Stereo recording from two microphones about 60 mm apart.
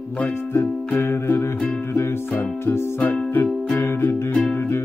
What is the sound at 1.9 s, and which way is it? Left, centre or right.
Music, left.